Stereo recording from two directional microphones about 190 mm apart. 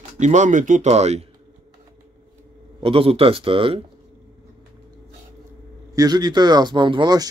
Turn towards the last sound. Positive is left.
turn(degrees=-20)  # may be behind; listen again after turning